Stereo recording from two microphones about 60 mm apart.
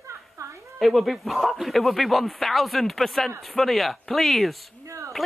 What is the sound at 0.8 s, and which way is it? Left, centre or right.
A man's voice, centre.